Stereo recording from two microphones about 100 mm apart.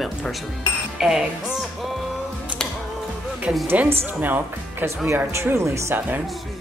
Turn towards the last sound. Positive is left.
turn(degrees=-30)  # may be behind; listen again after turning